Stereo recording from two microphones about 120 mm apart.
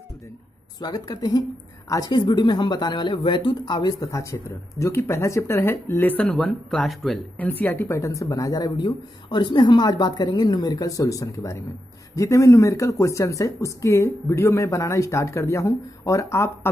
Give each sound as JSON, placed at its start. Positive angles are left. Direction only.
{"t": 0.7, "sound": "speech", "side_deg": 35}
{"t": 6.4, "sound": "speech", "side_deg": 0}
{"t": 7.3, "sound": "speech", "side_deg": 15}